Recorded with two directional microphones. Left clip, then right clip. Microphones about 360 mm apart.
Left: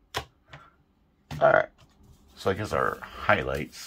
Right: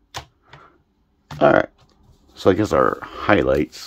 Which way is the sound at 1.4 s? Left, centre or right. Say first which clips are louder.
Right 5 dB; right.